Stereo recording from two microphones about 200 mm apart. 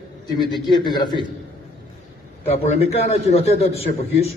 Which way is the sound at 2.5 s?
30° left (ahead or behind).